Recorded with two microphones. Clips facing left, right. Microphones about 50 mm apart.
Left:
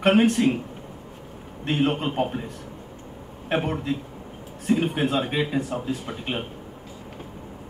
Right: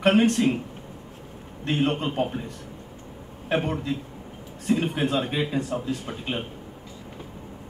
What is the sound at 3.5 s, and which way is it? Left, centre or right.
A man's voice, centre.